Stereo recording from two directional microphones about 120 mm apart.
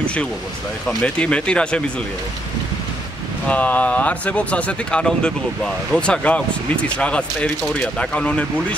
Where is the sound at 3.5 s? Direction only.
10° left (ahead or behind).